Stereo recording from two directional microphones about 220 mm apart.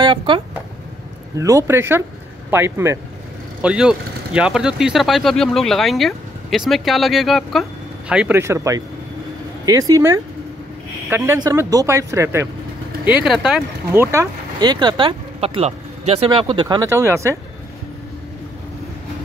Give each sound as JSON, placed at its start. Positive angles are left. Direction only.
{"t": 0.0, "sound": "speech", "side_deg": -20}
{"t": 1.4, "sound": "speech", "side_deg": -15}
{"t": 14.1, "sound": "speech", "side_deg": -15}